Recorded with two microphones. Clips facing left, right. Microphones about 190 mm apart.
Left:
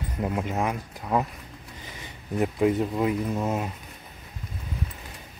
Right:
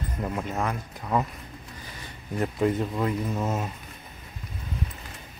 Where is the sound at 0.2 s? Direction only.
15° left (ahead or behind).